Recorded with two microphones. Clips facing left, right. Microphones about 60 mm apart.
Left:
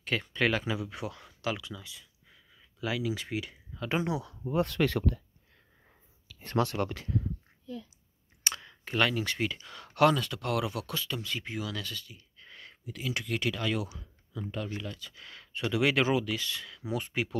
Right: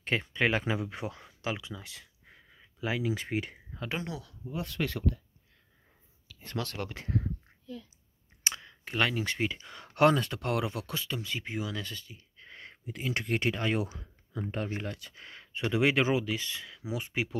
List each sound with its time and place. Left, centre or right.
0.0 s speech: right
1.8 s speech: right
2.2 s a sound: right
3.9 s speech: centre
4.5 s speech: left
6.6 s speech: left
7.1 s speech: right
8.6 s speech: centre; by 15.1 s right
15.1 s speech: right